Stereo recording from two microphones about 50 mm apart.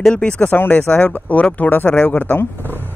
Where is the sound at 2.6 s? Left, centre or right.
Right.